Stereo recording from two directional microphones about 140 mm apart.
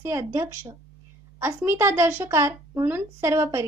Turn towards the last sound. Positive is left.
turn(degrees=-20)  # may be behind; listen again after turning